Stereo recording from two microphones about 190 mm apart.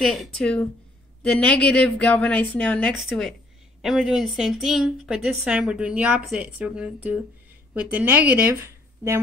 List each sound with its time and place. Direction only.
0.0 s a woman's voice: centre (ahead or behind); by 9.2 s 15° right (ahead or behind)